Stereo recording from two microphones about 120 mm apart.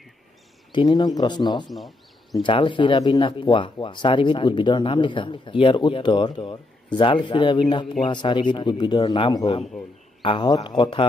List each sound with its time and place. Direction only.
0.7 s speech: 40° left (ahead or behind)